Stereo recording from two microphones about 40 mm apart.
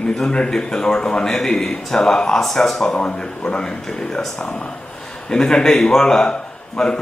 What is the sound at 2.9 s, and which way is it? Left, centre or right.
A man's voice, left.